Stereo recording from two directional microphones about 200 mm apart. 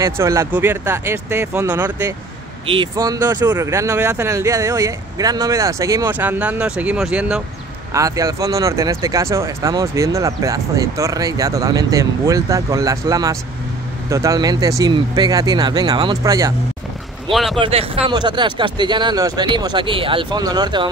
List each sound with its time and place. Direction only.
0.0 s speech: 15° right (ahead or behind)
2.6 s speech: 25° right (ahead or behind); by 7.4 s 5° right (ahead or behind)
7.9 s speech: 15° right (ahead or behind)
17.3 s speech: centre (ahead or behind)
17.6 s speech: 30° right (ahead or behind)